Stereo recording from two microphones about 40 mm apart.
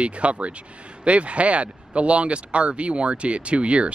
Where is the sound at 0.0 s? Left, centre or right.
Right.